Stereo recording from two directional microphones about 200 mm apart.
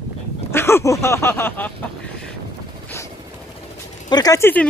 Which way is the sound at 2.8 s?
15° left (ahead or behind).